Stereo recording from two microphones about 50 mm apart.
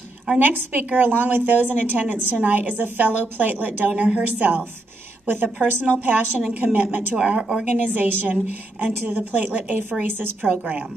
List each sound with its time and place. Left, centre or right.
0.4 s a woman's voice: right
3.9 s a woman's voice: right
7.2 s a woman's voice: centre
7.9 s a woman's voice: right
10.0 s a woman's voice: right
10.6 s a woman's voice: right